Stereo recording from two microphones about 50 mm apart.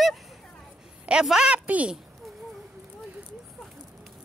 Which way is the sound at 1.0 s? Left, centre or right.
Centre.